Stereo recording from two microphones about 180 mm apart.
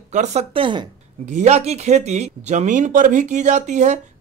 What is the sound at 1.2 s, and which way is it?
Speech, 40° right (ahead or behind).